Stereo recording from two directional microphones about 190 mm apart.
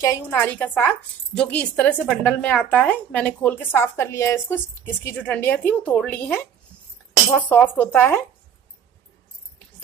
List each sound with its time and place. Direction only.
0.0 s speech: 15° left (ahead or behind)
7.4 s speech: 10° left (ahead or behind)